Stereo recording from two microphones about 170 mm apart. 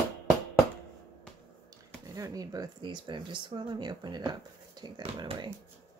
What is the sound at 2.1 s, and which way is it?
Speech, 20° right (ahead or behind).